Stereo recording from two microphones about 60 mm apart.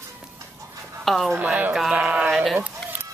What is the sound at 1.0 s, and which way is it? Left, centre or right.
Speech, centre.